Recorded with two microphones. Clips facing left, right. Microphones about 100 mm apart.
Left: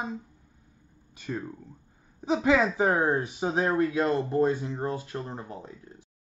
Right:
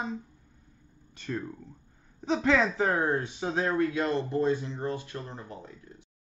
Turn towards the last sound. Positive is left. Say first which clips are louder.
# left 2 dB
turn(degrees=30)  # may be behind; listen again after turning